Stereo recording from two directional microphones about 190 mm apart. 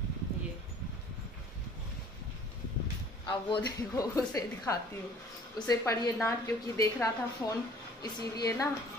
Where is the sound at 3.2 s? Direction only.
20° left (ahead or behind).